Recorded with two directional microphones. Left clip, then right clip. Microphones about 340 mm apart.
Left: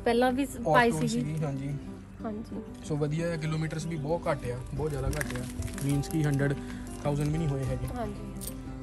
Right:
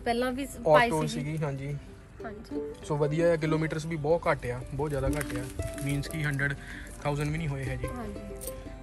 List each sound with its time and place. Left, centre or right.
0.0 s a woman's voice: left
0.9 s speech: centre
2.9 s speech: centre
5.9 s speech: centre